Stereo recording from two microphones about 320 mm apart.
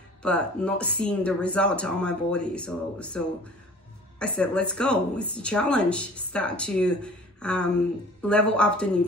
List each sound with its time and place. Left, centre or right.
0.2 s speech: centre
4.2 s speech: centre